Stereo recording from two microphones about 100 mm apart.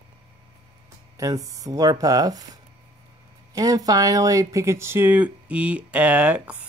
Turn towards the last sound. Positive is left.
turn(degrees=-10)  # may be behind; listen again after turning